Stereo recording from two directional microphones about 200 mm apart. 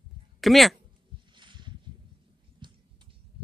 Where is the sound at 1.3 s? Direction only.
25° right (ahead or behind).